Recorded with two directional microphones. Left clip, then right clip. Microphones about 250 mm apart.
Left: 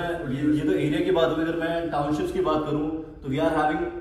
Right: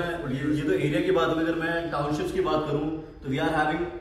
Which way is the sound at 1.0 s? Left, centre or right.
Centre.